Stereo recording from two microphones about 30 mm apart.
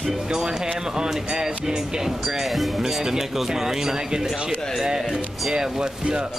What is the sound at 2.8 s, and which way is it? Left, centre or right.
Speech, centre.